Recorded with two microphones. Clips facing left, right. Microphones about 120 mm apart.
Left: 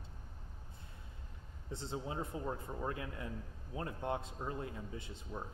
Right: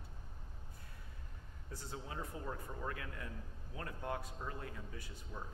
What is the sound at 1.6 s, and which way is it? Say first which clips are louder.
Speech: left 6 dB; 25° left (ahead or behind).